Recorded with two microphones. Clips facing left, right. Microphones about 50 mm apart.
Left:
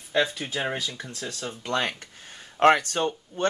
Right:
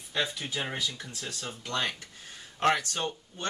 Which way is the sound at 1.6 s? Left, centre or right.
Left.